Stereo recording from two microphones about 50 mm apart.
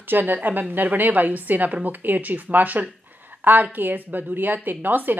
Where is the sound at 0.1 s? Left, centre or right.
Right.